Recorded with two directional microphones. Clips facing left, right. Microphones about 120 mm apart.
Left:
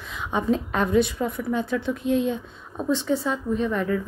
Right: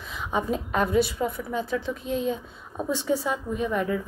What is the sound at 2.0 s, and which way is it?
Speech, 35° right (ahead or behind).